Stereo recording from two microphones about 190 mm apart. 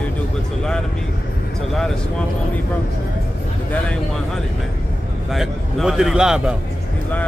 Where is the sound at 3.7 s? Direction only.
5° left (ahead or behind).